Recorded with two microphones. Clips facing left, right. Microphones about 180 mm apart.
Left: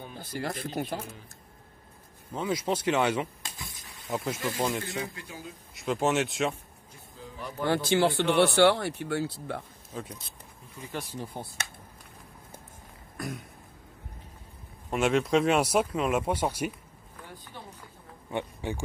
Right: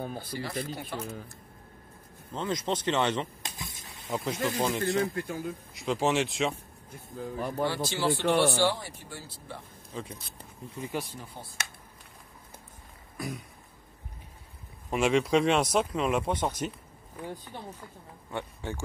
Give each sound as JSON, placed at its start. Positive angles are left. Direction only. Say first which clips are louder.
{"t": 0.2, "sound": "speech", "louder": "left 1 dB", "side_deg": 50}
{"t": 2.3, "sound": "speech", "louder": "left 2 dB", "side_deg": 10}
{"t": 3.4, "sound": "a sound", "louder": "right 2 dB", "side_deg": -20}
{"t": 4.1, "sound": "speech", "louder": "right 1 dB", "side_deg": 0}
{"t": 5.1, "sound": "speech", "louder": "right 9 dB", "side_deg": -55}
{"t": 5.8, "sound": "speech", "louder": "left 1 dB", "side_deg": 0}
{"t": 6.9, "sound": "speech", "louder": "right 9 dB", "side_deg": -55}
{"t": 7.6, "sound": "speech", "louder": "left 5 dB", "side_deg": 55}
{"t": 9.9, "sound": "speech", "louder": "even", "side_deg": 5}
{"t": 10.8, "sound": "speech", "louder": "right 3 dB", "side_deg": -10}
{"t": 11.4, "sound": "speech", "louder": "left 6 dB", "side_deg": 50}
{"t": 13.2, "sound": "speech", "louder": "even", "side_deg": 0}
{"t": 14.9, "sound": "speech", "louder": "even", "side_deg": 0}
{"t": 18.3, "sound": "speech", "louder": "left 3 dB", "side_deg": 15}